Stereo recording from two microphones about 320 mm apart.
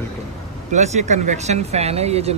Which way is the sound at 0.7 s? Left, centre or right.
Right.